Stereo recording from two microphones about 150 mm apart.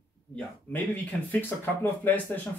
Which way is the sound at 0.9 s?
10° left (ahead or behind).